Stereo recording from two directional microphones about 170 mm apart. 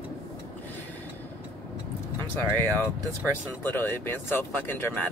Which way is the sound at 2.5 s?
10° left (ahead or behind).